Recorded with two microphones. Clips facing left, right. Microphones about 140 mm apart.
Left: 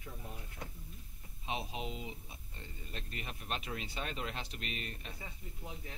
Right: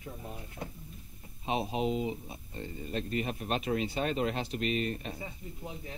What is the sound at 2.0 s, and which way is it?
Speech, 40° right (ahead or behind).